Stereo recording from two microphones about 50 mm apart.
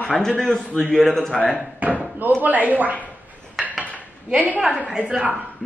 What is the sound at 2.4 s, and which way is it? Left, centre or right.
Speech, right.